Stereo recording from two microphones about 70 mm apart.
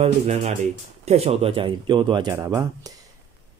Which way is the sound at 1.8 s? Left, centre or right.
Right.